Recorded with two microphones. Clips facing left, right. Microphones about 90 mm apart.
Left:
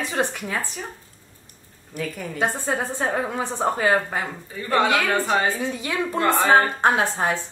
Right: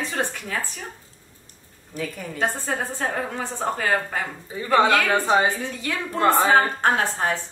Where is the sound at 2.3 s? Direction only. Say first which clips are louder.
Left 2 dB; 15° left (ahead or behind).